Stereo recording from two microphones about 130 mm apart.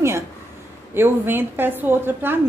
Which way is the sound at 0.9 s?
15° right (ahead or behind).